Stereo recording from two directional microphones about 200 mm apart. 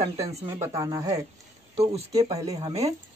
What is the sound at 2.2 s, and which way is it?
Speech, 15° right (ahead or behind).